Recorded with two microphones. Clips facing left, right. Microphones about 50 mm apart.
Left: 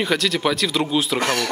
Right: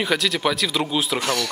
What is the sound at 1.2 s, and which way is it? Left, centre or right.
Speech, left.